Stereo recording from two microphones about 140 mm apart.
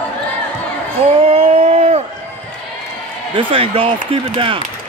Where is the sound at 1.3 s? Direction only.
55° right (ahead or behind).